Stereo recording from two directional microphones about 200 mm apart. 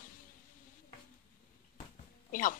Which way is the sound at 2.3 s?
40° left (ahead or behind).